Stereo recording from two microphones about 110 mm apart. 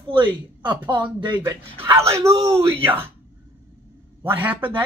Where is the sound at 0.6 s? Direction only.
45° right (ahead or behind).